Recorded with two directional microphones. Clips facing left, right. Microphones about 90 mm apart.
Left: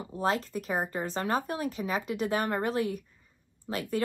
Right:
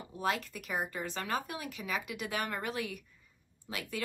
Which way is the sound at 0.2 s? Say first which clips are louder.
Left 5 dB; 35° left (ahead or behind).